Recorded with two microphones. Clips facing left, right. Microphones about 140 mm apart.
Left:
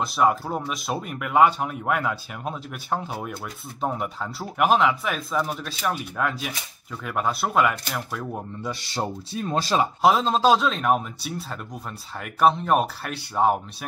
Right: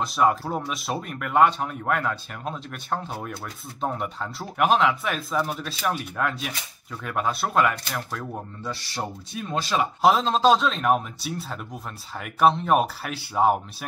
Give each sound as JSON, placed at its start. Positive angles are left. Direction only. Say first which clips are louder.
{"t": 0.0, "sound": "speech", "louder": "even", "side_deg": 0}
{"t": 8.9, "sound": "speech", "louder": "left 6 dB", "side_deg": 35}
{"t": 10.0, "sound": "speech", "louder": "right 1 dB", "side_deg": 0}